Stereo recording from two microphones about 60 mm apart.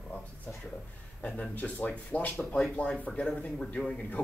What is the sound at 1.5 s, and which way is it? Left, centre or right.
Speech, left.